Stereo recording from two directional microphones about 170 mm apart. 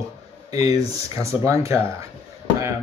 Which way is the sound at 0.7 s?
20° right (ahead or behind).